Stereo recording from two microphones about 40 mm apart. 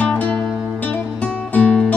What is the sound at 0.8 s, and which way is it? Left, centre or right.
Music, left.